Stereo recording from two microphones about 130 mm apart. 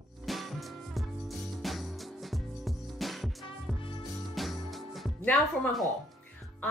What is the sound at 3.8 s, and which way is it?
Music, 45° left (ahead or behind).